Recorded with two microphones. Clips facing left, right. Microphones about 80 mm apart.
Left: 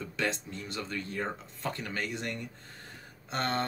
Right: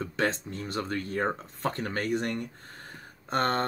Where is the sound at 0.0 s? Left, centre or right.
Right.